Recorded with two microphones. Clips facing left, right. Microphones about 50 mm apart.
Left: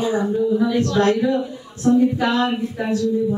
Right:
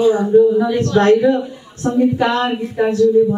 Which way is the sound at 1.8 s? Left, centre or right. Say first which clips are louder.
Right 1 dB; right.